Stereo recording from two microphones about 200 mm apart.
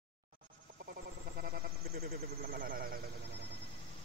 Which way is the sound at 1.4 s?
50° right (ahead or behind).